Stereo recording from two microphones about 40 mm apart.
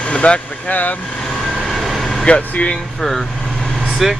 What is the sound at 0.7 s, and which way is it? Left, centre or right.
Speech, left.